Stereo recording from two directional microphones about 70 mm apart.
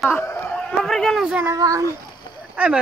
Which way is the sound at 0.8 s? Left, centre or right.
Centre.